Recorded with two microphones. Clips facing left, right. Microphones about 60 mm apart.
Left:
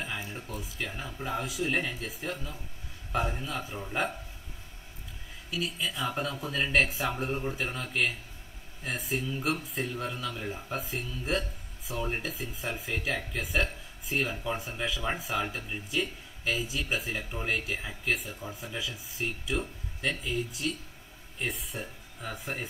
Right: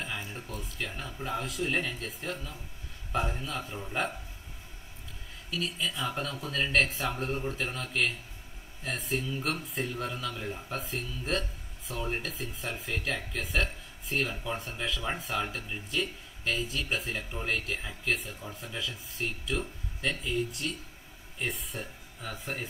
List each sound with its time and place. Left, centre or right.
0.0 s speech: centre
5.5 s speech: centre